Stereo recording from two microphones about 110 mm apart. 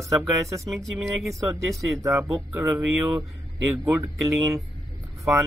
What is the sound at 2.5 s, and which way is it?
Speech, 20° right (ahead or behind).